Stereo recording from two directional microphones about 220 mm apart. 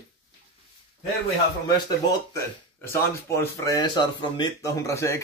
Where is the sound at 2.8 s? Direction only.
10° left (ahead or behind).